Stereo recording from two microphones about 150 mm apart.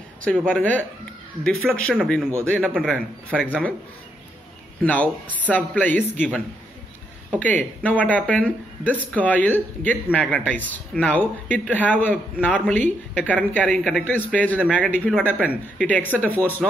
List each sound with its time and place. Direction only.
0.5 s speech: 10° left (ahead or behind)
4.8 s speech: 10° left (ahead or behind)